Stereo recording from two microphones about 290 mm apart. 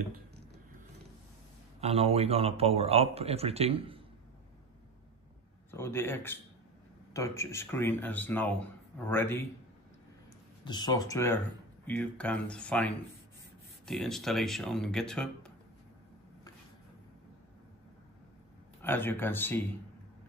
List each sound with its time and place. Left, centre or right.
1.8 s speech: right
5.7 s speech: centre
10.6 s speech: centre
18.8 s speech: centre